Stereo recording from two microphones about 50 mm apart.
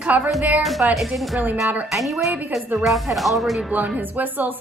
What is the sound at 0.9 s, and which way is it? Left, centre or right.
Speech, centre.